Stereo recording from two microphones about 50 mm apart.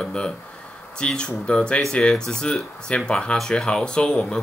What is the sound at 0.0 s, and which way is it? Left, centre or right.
Speech, centre.